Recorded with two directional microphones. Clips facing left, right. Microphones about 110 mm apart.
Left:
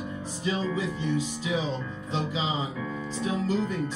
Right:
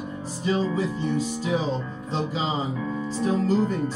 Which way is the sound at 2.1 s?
40° right (ahead or behind).